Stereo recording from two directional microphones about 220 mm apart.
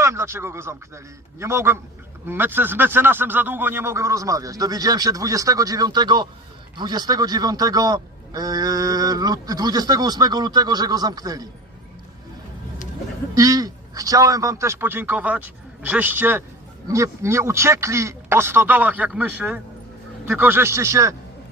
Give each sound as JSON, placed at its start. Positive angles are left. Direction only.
{"t": 0.0, "sound": "a man's voice", "side_deg": -10}
{"t": 13.3, "sound": "a man's voice", "side_deg": -15}